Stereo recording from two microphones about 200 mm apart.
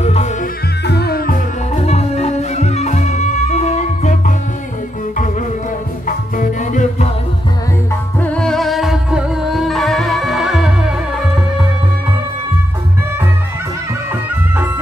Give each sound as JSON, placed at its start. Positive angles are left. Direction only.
{"t": 0.0, "sound": "music", "side_deg": 30}
{"t": 0.8, "sound": "music", "side_deg": 55}
{"t": 6.0, "sound": "music", "side_deg": 40}
{"t": 8.2, "sound": "music", "side_deg": 5}